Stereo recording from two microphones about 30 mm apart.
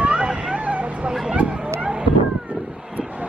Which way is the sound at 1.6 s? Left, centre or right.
Right.